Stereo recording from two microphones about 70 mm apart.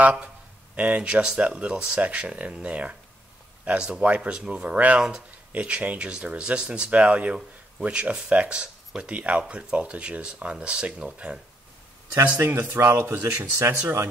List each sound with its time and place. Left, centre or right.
0.0 s speech: right
12.1 s speech: right
12.6 s speech: right